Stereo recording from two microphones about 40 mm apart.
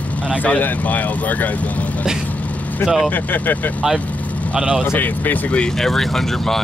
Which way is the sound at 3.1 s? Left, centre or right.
Left.